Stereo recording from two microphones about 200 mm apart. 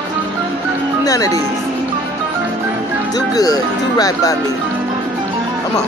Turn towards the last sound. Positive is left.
turn(degrees=20)  # may be behind; listen again after turning